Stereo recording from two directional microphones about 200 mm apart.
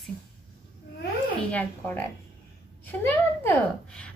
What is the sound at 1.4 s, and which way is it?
A woman's voice, 5° left (ahead or behind).